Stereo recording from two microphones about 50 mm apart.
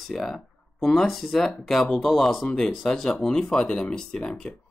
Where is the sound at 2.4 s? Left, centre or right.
Centre.